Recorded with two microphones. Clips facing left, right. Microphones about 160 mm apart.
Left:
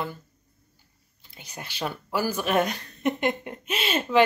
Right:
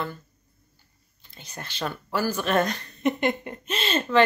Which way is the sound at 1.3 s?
10° left (ahead or behind).